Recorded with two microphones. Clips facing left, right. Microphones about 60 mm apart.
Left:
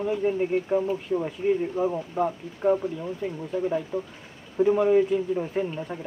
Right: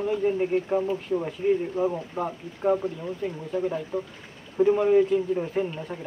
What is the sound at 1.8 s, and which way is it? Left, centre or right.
Speech, right.